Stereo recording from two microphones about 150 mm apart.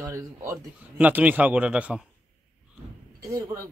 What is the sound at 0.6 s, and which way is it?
Speech, 10° right (ahead or behind).